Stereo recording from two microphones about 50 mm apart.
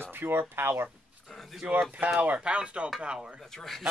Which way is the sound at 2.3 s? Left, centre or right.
Right.